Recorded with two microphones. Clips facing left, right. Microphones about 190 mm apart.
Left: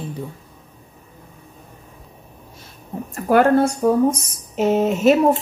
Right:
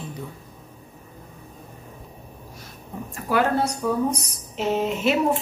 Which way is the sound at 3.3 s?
50° left (ahead or behind).